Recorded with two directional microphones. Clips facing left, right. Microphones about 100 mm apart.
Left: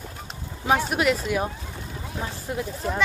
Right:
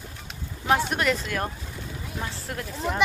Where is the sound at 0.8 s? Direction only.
5° left (ahead or behind).